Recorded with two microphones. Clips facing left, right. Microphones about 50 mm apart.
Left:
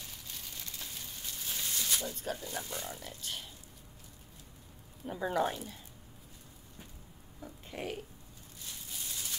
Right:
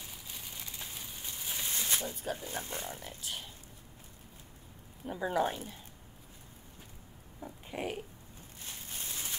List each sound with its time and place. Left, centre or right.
0.0 s a sound: centre
2.1 s speech: centre
2.4 s speech: right
3.2 s speech: centre
5.0 s speech: centre
7.3 s pig: centre
8.5 s a sound: right